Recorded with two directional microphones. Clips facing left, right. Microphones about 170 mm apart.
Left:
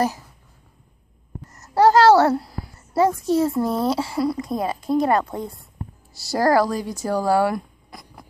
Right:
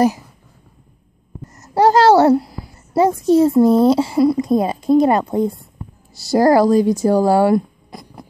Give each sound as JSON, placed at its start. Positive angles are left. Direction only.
{"t": 1.6, "sound": "a child's voice", "side_deg": -20}